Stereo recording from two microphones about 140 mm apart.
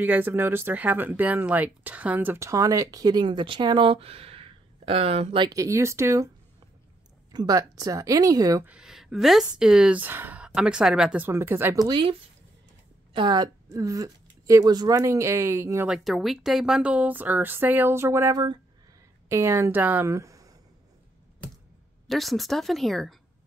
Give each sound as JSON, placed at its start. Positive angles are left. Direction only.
{"t": 0.0, "sound": "speech", "side_deg": -15}
{"t": 5.5, "sound": "speech", "side_deg": -20}
{"t": 7.3, "sound": "speech", "side_deg": -25}
{"t": 8.6, "sound": "speech", "side_deg": -5}
{"t": 11.8, "sound": "speech", "side_deg": -35}
{"t": 15.9, "sound": "a woman's voice", "side_deg": 0}
{"t": 22.0, "sound": "speech", "side_deg": 0}